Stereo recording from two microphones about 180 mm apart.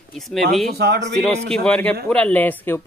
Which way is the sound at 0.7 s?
65° right (ahead or behind).